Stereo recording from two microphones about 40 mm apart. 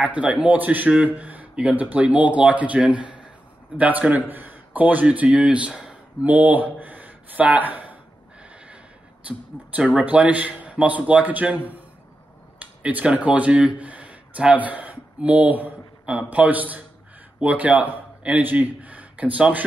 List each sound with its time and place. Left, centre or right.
0.0 s speech: right
0.8 s a man's voice: right
3.7 s a man's voice: right
6.2 s speech: right
9.3 s speech: right
12.5 s a sound: right
13.0 s speech: right